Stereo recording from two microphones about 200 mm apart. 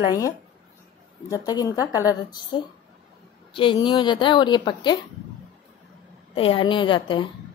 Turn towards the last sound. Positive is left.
turn(degrees=25)  # may be behind; listen again after turning